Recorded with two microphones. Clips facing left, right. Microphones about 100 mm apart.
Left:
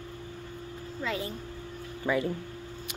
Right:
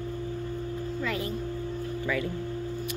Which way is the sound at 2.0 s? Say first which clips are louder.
Left 3 dB; 25° left (ahead or behind).